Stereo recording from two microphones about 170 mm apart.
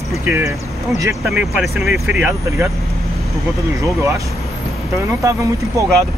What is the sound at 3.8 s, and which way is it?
Speech, 15° right (ahead or behind).